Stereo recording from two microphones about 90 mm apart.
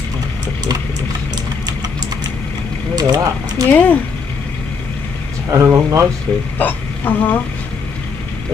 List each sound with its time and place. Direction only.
3.0 s a sound: 45° right (ahead or behind)
3.7 s speech: 15° left (ahead or behind)
5.5 s speech: 35° right (ahead or behind)
6.6 s speech: 20° left (ahead or behind)